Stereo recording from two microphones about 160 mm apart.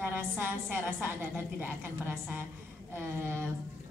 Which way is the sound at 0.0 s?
15° right (ahead or behind).